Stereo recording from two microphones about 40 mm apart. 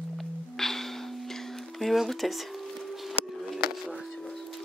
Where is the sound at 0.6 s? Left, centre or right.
Centre.